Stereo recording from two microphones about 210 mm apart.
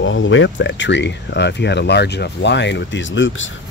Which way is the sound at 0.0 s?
65° left (ahead or behind).